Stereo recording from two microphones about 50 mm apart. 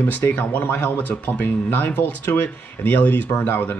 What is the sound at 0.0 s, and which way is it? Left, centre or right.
Speech, left.